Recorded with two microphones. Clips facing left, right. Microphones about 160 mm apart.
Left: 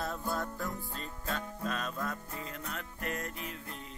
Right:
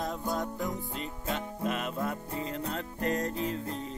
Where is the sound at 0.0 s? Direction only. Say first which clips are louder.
Right 3 dB; 15° right (ahead or behind).